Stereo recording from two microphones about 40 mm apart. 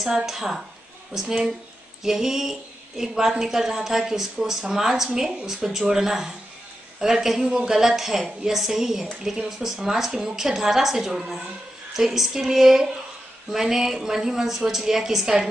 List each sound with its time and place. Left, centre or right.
0.0 s a woman's voice: centre